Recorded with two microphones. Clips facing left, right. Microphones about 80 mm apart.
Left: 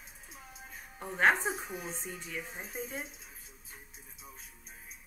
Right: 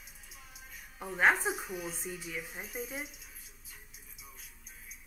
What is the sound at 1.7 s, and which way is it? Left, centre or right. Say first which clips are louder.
Speech: right 1 dB; left.